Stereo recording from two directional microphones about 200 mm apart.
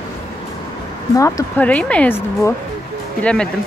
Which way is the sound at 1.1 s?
15° left (ahead or behind).